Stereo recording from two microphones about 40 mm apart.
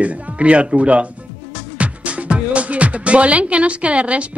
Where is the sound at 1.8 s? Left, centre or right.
Right.